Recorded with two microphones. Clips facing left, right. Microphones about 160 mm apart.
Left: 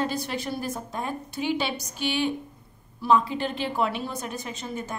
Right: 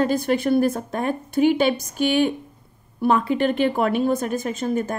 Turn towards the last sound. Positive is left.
turn(degrees=-50)  # may be behind; listen again after turning